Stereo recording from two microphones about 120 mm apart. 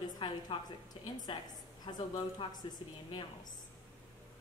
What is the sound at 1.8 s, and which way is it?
A woman's voice, 40° left (ahead or behind).